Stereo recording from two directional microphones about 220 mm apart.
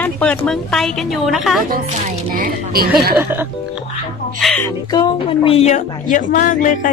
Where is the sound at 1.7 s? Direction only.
40° right (ahead or behind).